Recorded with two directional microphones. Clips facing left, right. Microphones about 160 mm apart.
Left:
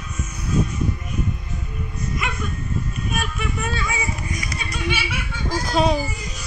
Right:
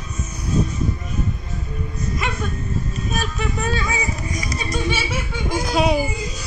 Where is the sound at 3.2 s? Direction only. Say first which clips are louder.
Right 3 dB; 35° right (ahead or behind).